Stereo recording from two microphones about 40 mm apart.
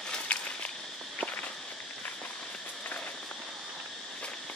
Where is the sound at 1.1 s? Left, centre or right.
Left.